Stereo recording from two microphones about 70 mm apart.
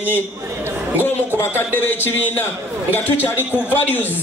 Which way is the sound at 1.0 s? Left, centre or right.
Left.